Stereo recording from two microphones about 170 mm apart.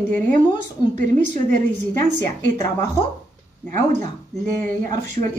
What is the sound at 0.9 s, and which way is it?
A woman's voice, 50° right (ahead or behind).